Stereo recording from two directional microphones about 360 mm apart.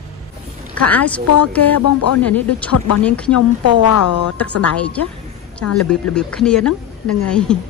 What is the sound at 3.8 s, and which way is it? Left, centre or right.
Speech, left.